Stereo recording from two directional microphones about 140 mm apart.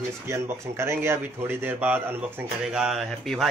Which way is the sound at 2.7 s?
Centre (ahead or behind).